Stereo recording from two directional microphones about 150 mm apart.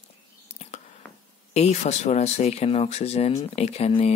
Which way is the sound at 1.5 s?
50° left (ahead or behind).